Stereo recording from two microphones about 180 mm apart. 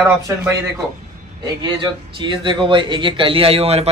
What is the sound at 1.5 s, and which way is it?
A man's voice, 25° right (ahead or behind).